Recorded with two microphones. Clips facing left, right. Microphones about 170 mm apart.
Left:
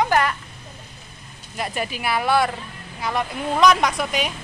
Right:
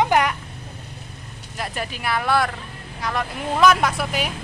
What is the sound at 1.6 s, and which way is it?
Speech, centre (ahead or behind).